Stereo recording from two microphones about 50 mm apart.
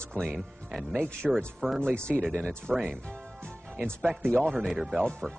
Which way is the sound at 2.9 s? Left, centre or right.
Centre.